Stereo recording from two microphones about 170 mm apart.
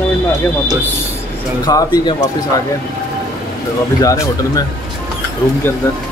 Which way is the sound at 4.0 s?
20° left (ahead or behind).